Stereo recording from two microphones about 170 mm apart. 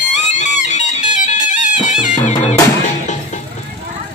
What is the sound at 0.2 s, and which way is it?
Music, 45° left (ahead or behind).